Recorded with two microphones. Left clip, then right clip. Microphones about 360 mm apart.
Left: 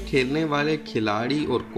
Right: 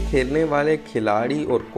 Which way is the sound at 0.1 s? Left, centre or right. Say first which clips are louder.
Right 3 dB; centre.